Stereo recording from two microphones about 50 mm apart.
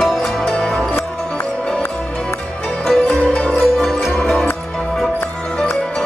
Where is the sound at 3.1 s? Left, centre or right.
Left.